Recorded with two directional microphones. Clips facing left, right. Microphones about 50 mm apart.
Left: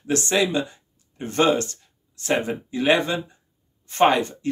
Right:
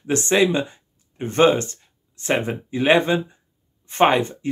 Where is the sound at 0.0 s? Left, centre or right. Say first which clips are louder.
Right 3 dB; right.